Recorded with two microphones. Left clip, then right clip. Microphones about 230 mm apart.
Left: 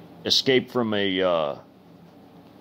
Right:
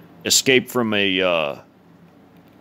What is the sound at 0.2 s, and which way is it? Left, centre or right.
Speech, right.